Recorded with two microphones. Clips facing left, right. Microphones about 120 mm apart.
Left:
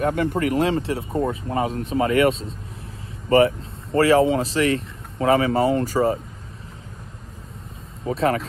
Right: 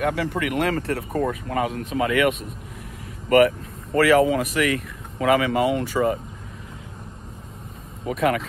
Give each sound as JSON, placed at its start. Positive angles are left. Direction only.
{"t": 0.1, "sound": "speech", "side_deg": 40}
{"t": 8.0, "sound": "speech", "side_deg": 30}